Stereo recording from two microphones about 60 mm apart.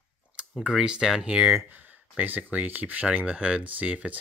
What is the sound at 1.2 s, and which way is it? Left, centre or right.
Speech, right.